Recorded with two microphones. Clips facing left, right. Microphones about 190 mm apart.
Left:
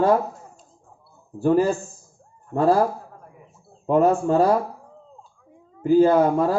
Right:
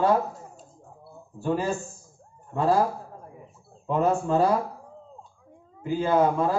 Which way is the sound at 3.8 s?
45° left (ahead or behind).